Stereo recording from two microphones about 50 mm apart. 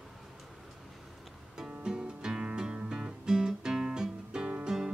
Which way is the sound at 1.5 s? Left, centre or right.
Centre.